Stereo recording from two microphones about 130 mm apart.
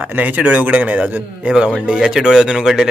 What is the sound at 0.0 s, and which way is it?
A man's voice, 15° right (ahead or behind).